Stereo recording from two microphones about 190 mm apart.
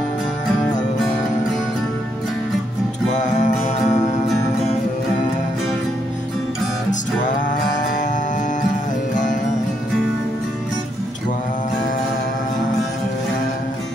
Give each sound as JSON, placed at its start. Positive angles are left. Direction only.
{"t": 3.1, "sound": "music", "side_deg": 40}
{"t": 9.1, "sound": "music", "side_deg": 40}